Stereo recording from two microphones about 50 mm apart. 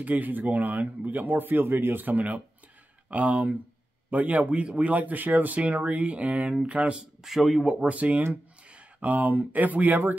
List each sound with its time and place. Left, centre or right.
0.0 s speech: right
2.0 s speech: right
7.2 s speech: centre
7.6 s speech: right